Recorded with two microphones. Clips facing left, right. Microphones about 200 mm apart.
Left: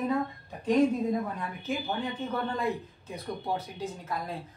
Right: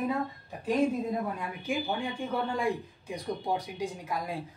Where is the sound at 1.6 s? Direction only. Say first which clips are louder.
Right 1 dB; 10° right (ahead or behind).